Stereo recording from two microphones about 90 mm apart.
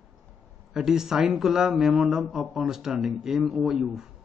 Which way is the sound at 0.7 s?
5° right (ahead or behind).